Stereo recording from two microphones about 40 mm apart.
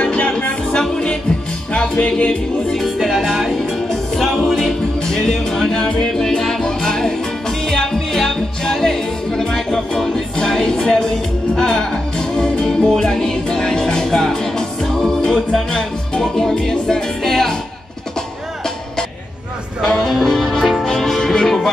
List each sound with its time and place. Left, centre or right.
0.0 s music: left
0.7 s music: centre
2.7 s music: centre
19.8 s music: centre